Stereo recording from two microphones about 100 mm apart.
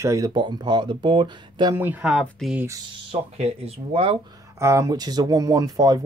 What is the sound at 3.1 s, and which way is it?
Speech, 90° right.